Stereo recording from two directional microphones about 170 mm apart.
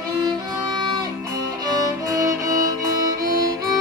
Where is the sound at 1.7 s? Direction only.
20° right (ahead or behind).